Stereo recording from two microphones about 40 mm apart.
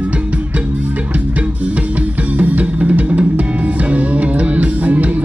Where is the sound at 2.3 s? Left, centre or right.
Right.